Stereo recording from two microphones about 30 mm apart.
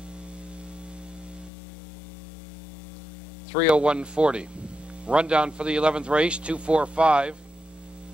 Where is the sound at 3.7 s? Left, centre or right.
Right.